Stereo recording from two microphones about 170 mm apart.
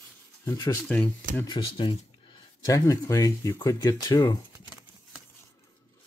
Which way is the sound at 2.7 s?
20° left (ahead or behind).